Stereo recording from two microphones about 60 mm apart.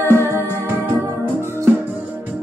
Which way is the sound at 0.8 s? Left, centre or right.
Right.